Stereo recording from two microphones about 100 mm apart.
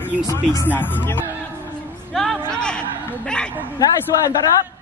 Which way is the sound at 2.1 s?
5° left (ahead or behind).